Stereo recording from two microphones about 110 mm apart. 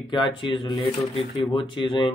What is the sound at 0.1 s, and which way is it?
Speech, 45° left (ahead or behind).